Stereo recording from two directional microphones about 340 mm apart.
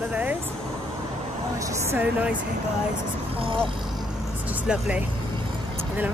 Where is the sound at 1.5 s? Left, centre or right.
Centre.